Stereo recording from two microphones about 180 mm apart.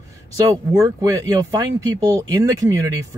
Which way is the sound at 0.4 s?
20° right (ahead or behind).